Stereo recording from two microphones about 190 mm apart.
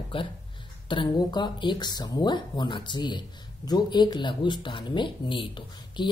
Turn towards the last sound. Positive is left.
turn(degrees=25)  # may be behind; listen again after turning